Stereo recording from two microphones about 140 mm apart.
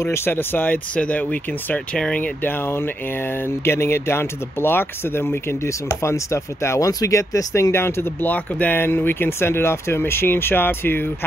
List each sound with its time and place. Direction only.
0.0 s speech: 15° left (ahead or behind)